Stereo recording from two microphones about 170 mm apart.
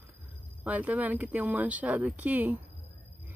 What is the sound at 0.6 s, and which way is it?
Speech, 10° right (ahead or behind).